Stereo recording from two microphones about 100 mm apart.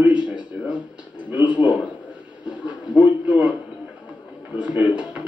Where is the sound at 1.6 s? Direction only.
15° right (ahead or behind).